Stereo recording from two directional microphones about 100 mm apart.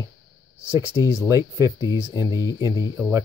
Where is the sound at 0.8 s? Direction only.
30° left (ahead or behind).